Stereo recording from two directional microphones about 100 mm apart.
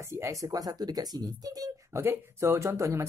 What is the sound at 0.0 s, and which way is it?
Speech, 30° right (ahead or behind).